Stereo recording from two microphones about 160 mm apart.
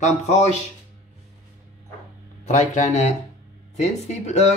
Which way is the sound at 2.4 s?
45° left (ahead or behind).